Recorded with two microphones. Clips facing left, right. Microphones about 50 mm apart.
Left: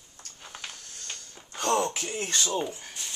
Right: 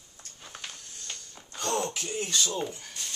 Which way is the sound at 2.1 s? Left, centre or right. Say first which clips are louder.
Right 2 dB; left.